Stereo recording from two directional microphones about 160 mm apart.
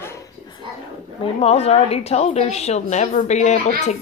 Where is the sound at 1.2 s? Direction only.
40° left (ahead or behind).